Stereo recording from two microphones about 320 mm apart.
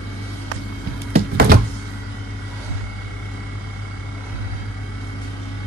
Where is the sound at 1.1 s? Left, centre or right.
Right.